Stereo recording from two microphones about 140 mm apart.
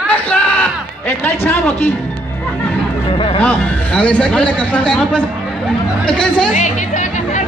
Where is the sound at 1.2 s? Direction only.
15° left (ahead or behind).